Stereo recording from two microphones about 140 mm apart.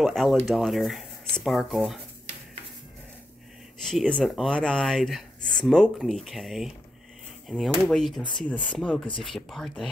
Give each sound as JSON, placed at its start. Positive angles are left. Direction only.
{"t": 0.0, "sound": "speech", "side_deg": 0}
{"t": 3.8, "sound": "speech", "side_deg": 5}
{"t": 8.2, "sound": "speech", "side_deg": 35}
{"t": 8.5, "sound": "speech", "side_deg": 10}